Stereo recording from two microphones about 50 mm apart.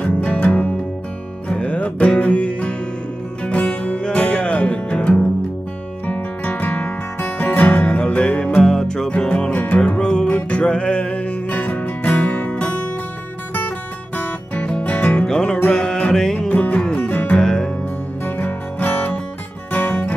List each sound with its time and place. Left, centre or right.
0.0 s music: left
8.0 s music: left
8.6 s music: centre
9.5 s music: left
9.9 s music: centre
14.1 s music: left
15.2 s music: centre
16.3 s music: left
16.8 s music: centre
17.1 s music: left
17.4 s music: centre
18.2 s music: left